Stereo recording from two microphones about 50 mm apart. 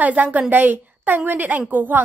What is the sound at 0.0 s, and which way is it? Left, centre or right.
A woman's voice, right.